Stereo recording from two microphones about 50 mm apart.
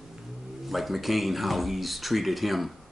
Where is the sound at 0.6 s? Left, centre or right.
Centre.